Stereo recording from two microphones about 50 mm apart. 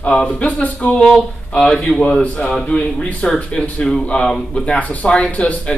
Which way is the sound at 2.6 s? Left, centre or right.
Left.